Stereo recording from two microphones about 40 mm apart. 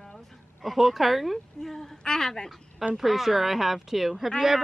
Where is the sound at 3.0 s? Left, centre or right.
Centre.